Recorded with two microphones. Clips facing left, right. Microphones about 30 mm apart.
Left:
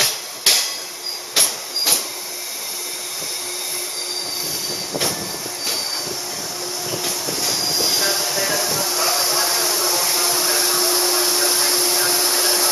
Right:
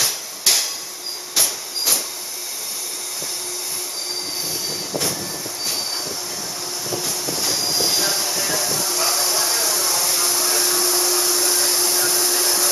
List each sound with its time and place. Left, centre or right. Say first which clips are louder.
0.5 s a sound: left 2 dB; left
6.9 s music: even; centre
7.4 s train: left 1 dB; centre; by 12.6 s left